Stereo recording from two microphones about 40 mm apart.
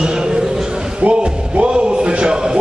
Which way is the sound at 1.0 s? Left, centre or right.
Right.